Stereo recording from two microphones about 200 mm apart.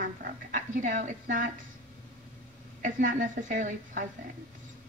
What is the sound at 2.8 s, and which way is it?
A woman's voice, 40° right (ahead or behind).